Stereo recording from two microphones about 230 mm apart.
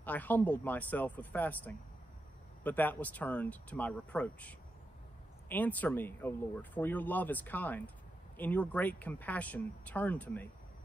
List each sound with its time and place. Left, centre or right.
0.0 s speech: centre